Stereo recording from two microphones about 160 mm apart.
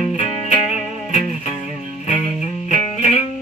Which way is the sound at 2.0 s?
45° left (ahead or behind).